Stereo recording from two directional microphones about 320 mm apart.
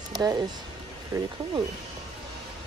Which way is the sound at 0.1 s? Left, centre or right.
Centre.